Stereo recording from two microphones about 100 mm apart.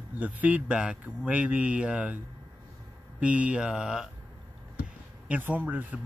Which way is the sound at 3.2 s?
10° right (ahead or behind).